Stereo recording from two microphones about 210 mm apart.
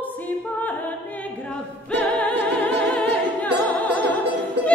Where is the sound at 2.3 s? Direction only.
55° right (ahead or behind).